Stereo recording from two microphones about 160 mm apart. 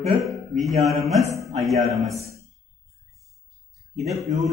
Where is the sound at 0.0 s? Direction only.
Centre (ahead or behind).